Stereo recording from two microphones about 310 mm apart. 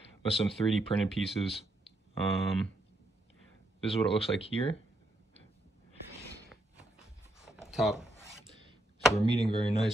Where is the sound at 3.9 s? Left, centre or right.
Centre.